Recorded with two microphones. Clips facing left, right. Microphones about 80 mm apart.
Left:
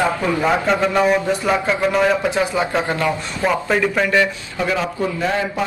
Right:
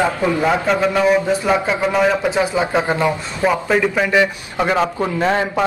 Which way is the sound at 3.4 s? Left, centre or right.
Centre.